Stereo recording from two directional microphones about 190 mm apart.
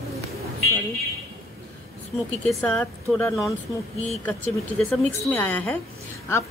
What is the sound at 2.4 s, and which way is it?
Speech, 5° left (ahead or behind).